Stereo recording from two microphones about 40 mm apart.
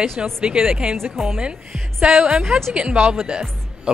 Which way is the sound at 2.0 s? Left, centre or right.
Right.